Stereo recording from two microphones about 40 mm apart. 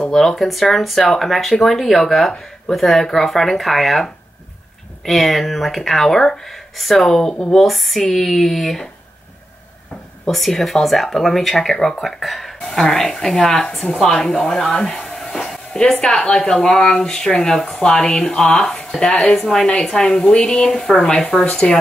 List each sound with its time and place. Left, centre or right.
0.1 s speech: centre
7.5 s speech: centre
10.3 s speech: centre
21.4 s speech: centre